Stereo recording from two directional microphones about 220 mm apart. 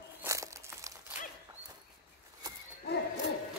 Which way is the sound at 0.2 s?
15° right (ahead or behind).